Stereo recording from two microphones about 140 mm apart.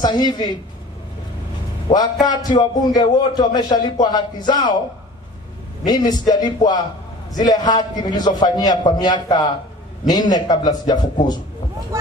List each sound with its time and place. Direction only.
0.0 s speech: 30° left (ahead or behind)
1.9 s a man's voice: 30° left (ahead or behind)
5.9 s a man's voice: 30° left (ahead or behind)